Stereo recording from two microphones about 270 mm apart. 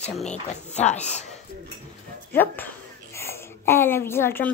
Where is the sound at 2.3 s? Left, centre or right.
Centre.